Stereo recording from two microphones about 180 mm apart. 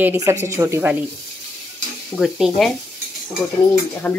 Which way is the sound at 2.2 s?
Centre (ahead or behind).